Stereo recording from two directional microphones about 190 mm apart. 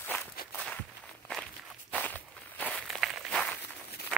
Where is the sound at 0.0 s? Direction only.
10° left (ahead or behind).